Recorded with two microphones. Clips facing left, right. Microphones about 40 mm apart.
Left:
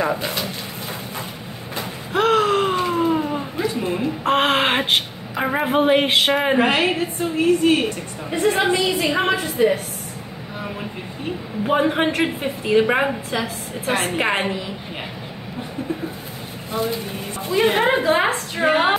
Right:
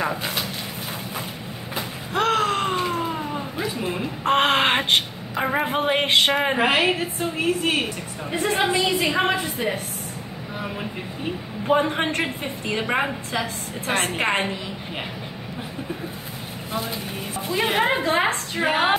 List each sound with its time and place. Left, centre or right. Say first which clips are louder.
0.0 s a woman's voice: left 3 dB; centre
1.8 s a sound: left 3 dB; centre
7.2 s a woman's voice: left 5 dB; centre
11.6 s a woman's voice: left 2 dB; centre
16.7 s a woman's voice: left 5 dB; centre